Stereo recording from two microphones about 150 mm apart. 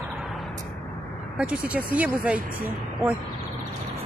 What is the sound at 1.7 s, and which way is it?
Speech, 10° right (ahead or behind).